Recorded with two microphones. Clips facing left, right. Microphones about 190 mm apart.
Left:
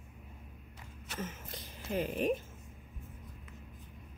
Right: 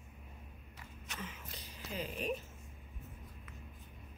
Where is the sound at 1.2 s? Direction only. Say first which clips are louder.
Left 7 dB; 50° left (ahead or behind).